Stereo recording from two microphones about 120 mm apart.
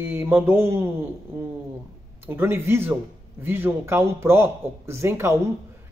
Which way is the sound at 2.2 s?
20° right (ahead or behind).